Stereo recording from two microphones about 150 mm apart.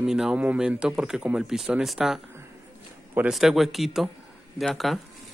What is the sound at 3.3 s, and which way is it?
A man's voice, centre (ahead or behind).